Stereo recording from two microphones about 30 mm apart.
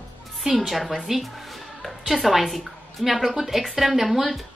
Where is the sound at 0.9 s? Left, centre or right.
Centre.